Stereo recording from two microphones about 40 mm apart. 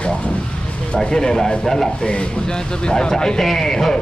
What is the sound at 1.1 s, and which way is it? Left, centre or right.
Speech, centre.